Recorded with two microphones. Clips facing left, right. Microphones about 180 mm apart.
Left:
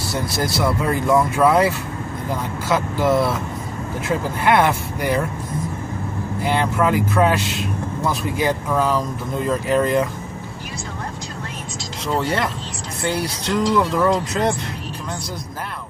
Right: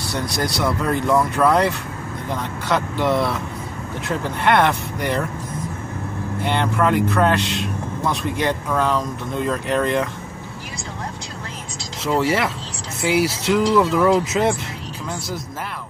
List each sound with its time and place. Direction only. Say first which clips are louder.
0.0 s speech: left 1 dB; centre (ahead or behind)
6.4 s speech: left 1 dB; centre (ahead or behind)
12.1 s speech: right 2 dB; 5° right (ahead or behind)